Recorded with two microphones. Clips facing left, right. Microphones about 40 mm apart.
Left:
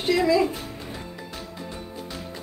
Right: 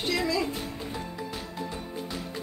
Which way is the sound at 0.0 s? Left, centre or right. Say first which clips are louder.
Left 7 dB; left.